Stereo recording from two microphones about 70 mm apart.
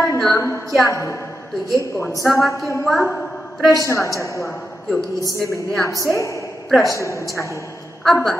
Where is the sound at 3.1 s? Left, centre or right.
Centre.